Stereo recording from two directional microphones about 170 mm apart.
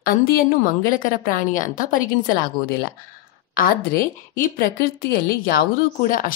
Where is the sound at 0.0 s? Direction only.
55° left (ahead or behind).